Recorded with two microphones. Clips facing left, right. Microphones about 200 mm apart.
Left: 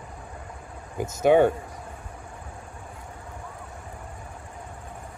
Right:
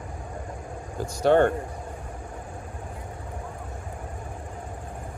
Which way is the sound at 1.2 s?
5° left (ahead or behind).